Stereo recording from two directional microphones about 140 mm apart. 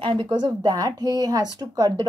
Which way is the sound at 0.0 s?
35° right (ahead or behind).